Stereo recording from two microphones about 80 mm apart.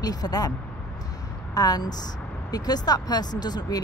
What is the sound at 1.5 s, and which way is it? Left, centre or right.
Speech, left.